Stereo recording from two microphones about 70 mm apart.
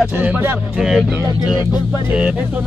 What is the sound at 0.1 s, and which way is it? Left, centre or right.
Speech, right.